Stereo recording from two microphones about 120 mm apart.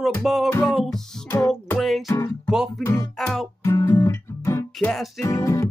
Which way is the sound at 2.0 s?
30° left (ahead or behind).